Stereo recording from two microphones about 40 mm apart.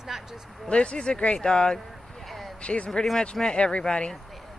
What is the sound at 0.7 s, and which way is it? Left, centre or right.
Speech, left.